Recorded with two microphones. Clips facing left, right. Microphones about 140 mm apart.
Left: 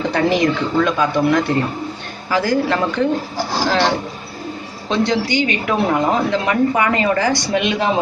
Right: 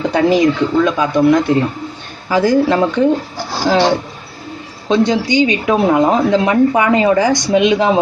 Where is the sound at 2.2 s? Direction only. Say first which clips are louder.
Right 5 dB; 20° right (ahead or behind).